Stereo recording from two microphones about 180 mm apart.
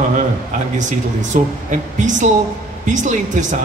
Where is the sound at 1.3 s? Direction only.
45° right (ahead or behind).